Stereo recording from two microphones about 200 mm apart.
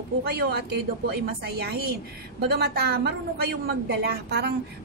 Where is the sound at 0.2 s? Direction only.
50° right (ahead or behind).